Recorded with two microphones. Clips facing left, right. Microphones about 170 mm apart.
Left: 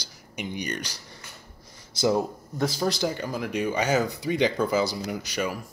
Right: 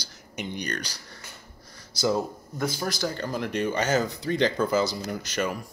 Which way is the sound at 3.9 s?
15° left (ahead or behind).